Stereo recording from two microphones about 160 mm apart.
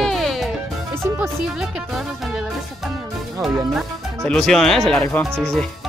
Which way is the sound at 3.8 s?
5° left (ahead or behind).